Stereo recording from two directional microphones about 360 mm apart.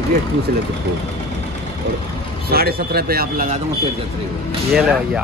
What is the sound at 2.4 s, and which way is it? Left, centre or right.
Speech, right.